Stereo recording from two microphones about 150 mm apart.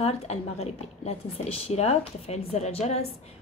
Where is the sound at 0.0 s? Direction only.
45° left (ahead or behind).